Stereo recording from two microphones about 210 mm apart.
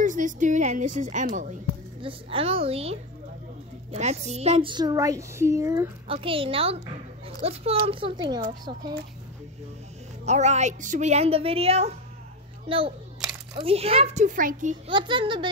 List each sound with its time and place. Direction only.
0.0 s a woman's voice: 35° right (ahead or behind)
2.0 s a woman's voice: 25° right (ahead or behind)
6.0 s a woman's voice: 25° right (ahead or behind)
10.2 s a woman's voice: 35° right (ahead or behind)
14.9 s a woman's voice: 25° right (ahead or behind)